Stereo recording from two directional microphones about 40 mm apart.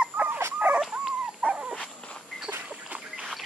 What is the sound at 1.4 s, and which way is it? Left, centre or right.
Dog, right.